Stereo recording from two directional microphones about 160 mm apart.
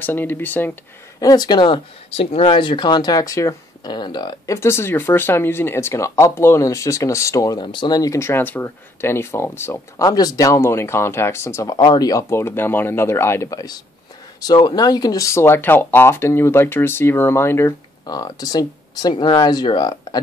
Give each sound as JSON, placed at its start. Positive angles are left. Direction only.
{"t": 0.0, "sound": "speech", "side_deg": 10}
{"t": 1.2, "sound": "speech", "side_deg": 25}
{"t": 4.6, "sound": "speech", "side_deg": 15}